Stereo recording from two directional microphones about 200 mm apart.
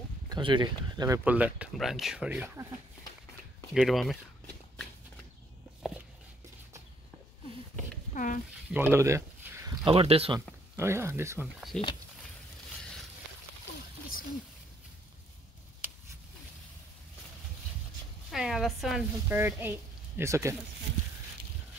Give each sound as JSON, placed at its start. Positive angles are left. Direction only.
{"t": 0.3, "sound": "speech", "side_deg": -25}
{"t": 3.7, "sound": "speech", "side_deg": 0}
{"t": 8.1, "sound": "a sound", "side_deg": 40}
{"t": 8.7, "sound": "a sound", "side_deg": -10}
{"t": 9.8, "sound": "speech", "side_deg": -30}
{"t": 10.8, "sound": "speech", "side_deg": -10}
{"t": 18.3, "sound": "speech", "side_deg": 0}